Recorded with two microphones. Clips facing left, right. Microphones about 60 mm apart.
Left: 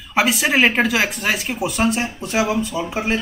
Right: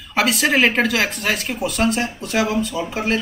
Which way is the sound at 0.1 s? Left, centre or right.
Centre.